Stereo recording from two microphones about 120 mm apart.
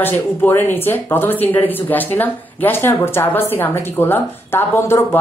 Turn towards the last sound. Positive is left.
turn(degrees=20)  # may be behind; listen again after turning